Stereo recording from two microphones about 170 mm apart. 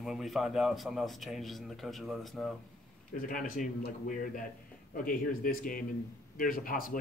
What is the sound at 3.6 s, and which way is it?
Speech, 50° left (ahead or behind).